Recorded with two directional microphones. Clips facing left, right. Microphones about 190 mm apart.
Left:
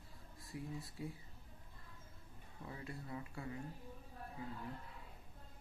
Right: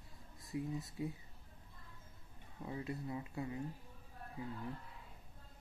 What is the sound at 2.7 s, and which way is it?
Speech, 20° right (ahead or behind).